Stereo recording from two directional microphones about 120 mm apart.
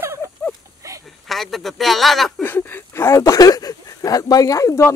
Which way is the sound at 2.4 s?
20° left (ahead or behind).